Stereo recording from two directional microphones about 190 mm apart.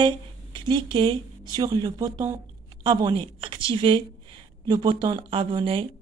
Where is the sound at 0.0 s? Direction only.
25° right (ahead or behind).